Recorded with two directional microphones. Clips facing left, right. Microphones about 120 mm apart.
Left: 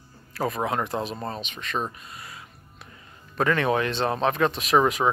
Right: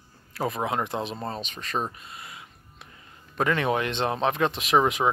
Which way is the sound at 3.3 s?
20° right (ahead or behind).